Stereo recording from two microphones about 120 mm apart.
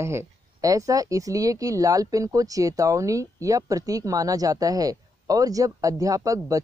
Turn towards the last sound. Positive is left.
turn(degrees=-30)  # may be behind; listen again after turning